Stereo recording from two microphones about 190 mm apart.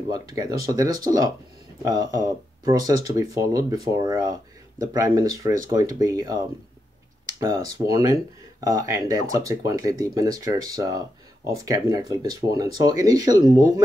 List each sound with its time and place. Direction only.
0.1 s speech: 20° right (ahead or behind)
7.7 s speech: 20° right (ahead or behind)